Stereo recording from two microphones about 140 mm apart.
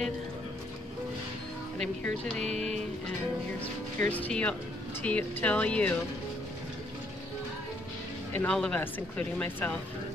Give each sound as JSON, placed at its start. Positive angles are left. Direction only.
{"t": 1.8, "sound": "speech", "side_deg": 5}
{"t": 2.4, "sound": "music", "side_deg": -50}
{"t": 4.1, "sound": "speech", "side_deg": 10}
{"t": 8.3, "sound": "speech", "side_deg": 15}